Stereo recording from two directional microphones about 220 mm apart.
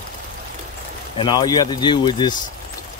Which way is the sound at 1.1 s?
20° left (ahead or behind).